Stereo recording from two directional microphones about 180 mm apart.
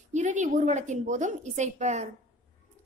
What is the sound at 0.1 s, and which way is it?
A woman's voice, 40° right (ahead or behind).